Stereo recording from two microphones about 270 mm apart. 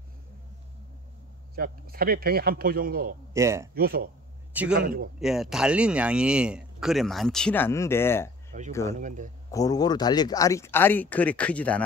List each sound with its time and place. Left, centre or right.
1.5 s a man's voice: right
3.3 s a man's voice: centre
3.7 s a man's voice: right
5.2 s speech: centre
8.5 s a sound: right
8.9 s a man's voice: right
9.5 s speech: centre